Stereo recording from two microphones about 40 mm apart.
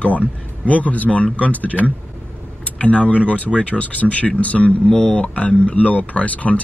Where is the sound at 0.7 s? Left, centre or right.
Left.